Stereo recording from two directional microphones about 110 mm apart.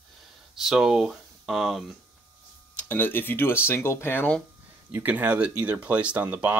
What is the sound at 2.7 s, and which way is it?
Speech, 15° left (ahead or behind).